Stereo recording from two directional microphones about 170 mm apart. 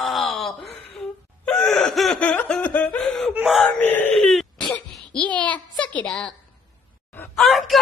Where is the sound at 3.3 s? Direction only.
5° right (ahead or behind).